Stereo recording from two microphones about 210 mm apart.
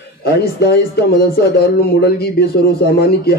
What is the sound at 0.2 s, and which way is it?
Speech, 50° left (ahead or behind).